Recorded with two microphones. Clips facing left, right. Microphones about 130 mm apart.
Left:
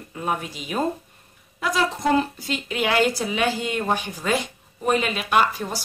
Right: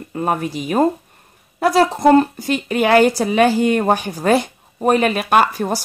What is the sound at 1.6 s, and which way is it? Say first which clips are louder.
A woman's voice: right 9 dB; 60° right (ahead or behind).